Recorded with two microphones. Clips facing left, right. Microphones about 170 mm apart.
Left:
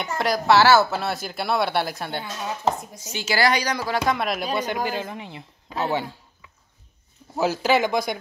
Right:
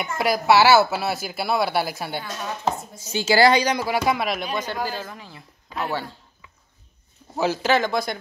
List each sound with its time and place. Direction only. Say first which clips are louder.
0.0 s speech: right 1 dB; 5° right (ahead or behind)
3.0 s a woman's voice: right 5 dB; 30° right (ahead or behind)
3.8 s speech: right 1 dB; 10° right (ahead or behind)
4.6 s speech: left 2 dB; 15° left (ahead or behind)
7.3 s a man's voice: even; 10° left (ahead or behind)